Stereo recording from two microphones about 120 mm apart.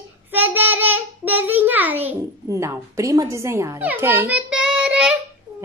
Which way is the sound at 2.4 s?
25° right (ahead or behind).